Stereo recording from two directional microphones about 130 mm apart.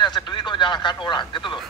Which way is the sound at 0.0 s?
35° left (ahead or behind).